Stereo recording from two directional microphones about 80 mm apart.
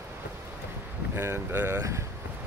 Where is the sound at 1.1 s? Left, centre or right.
Right.